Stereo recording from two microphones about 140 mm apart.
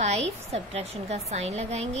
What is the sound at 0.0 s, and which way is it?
A child's voice, 50° right (ahead or behind).